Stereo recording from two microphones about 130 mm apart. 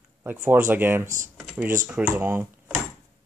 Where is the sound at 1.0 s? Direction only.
75° right (ahead or behind).